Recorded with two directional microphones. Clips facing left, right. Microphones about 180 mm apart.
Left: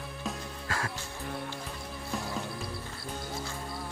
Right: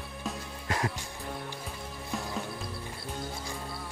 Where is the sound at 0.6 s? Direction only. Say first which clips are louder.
Right 4 dB; 20° right (ahead or behind).